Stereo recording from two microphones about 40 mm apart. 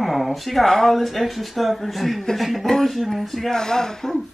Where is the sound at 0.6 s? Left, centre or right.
Centre.